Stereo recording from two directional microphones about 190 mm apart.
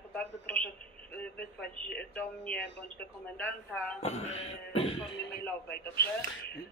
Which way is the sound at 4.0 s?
35° left (ahead or behind).